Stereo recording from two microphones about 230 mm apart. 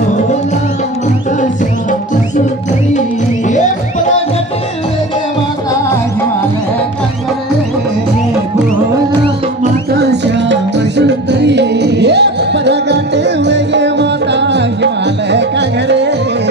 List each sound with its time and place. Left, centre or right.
1.4 s music: left
3.4 s music: left
9.9 s music: right